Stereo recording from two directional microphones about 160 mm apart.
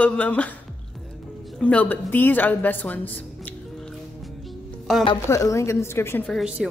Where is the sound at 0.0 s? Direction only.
10° left (ahead or behind).